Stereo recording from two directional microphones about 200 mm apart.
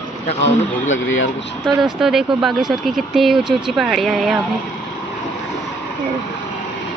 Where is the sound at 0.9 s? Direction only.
70° left (ahead or behind).